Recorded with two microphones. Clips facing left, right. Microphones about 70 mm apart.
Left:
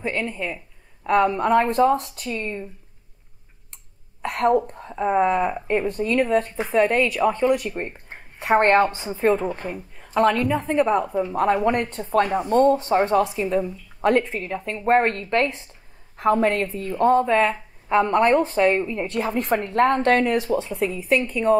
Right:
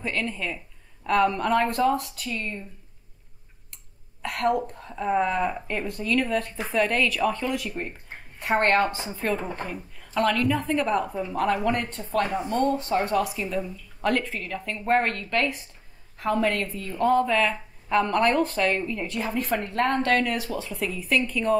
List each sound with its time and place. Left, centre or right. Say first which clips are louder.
0.0 s a woman's voice: left 3 dB; centre
1.8 s speech: left 5 dB; left
2.3 s a woman's voice: left 4 dB; centre
4.2 s cough: left 5 dB; left
4.7 s a woman's voice: left 4 dB; left
12.0 s a woman's voice: left 5 dB; left
17.2 s a woman's voice: left 4 dB; left
19.0 s a woman's voice: left 4 dB; left
20.0 s speech: left 5 dB; left
20.6 s a woman's voice: left 5 dB; left